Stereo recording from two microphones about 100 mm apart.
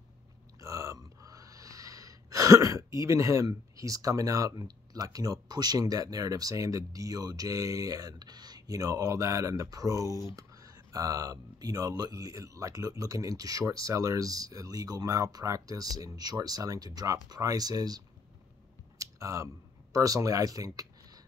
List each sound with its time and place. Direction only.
0.6 s gasp: 35° right (ahead or behind)
18.9 s speech: 30° right (ahead or behind)